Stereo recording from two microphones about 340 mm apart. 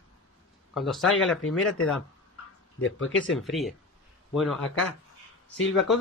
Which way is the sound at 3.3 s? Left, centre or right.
Centre.